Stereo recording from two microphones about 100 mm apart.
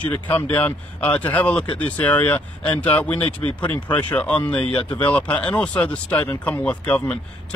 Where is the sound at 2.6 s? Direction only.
50° left (ahead or behind).